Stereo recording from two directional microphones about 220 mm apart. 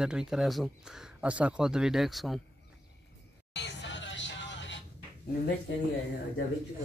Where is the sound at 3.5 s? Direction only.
50° left (ahead or behind).